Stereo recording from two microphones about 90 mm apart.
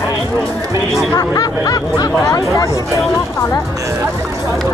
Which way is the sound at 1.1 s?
40° left (ahead or behind).